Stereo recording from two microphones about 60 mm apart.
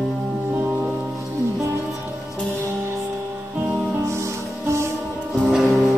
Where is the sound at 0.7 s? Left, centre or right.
Right.